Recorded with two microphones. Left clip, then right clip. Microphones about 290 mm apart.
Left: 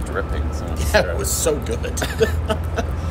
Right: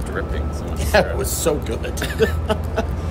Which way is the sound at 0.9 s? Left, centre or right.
Centre.